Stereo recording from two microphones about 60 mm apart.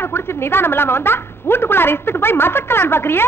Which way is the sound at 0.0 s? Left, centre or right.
Left.